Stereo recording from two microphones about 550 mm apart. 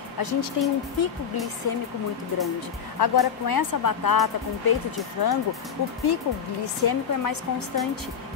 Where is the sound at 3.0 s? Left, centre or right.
Left.